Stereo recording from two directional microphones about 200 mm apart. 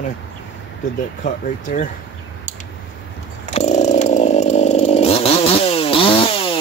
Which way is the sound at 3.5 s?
35° left (ahead or behind).